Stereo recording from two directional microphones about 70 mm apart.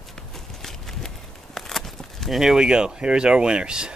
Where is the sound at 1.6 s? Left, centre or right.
Centre.